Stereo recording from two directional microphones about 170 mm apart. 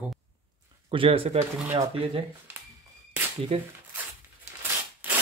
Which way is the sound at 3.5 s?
35° right (ahead or behind).